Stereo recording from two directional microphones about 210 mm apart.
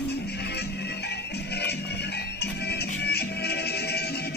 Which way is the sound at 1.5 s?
50° left (ahead or behind).